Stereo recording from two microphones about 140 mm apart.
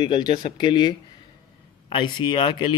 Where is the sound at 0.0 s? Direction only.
35° left (ahead or behind).